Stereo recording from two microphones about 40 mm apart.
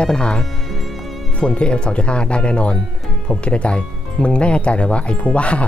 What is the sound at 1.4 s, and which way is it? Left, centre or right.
Speech, left.